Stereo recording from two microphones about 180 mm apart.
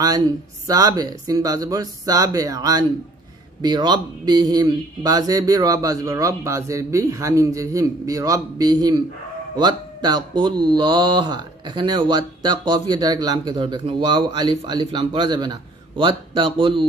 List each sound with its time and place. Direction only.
0.0 s speech: 20° right (ahead or behind)